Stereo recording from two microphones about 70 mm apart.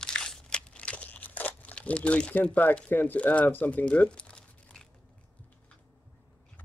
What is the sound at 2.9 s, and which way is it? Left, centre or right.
Speech, left.